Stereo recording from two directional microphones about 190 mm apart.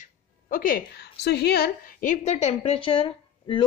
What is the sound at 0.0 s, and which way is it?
A woman's voice, 45° left (ahead or behind).